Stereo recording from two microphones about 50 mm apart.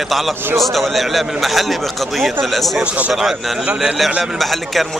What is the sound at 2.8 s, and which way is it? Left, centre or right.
Speech, right.